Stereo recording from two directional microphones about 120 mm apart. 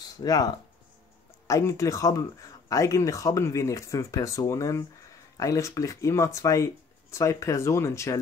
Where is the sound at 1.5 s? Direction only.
25° left (ahead or behind).